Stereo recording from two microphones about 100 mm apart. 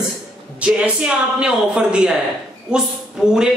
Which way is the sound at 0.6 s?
10° right (ahead or behind).